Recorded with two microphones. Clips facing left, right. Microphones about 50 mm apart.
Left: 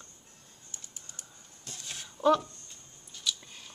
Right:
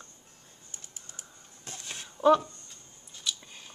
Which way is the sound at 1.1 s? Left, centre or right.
Right.